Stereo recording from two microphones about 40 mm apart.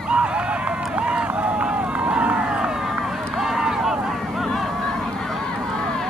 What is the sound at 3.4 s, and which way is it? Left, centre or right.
Run, centre.